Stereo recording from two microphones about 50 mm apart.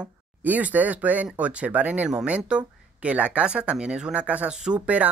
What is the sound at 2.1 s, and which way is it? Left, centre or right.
Speech, centre.